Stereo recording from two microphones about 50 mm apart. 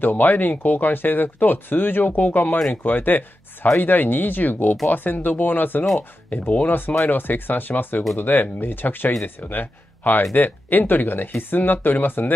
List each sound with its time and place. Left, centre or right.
0.0 s speech: left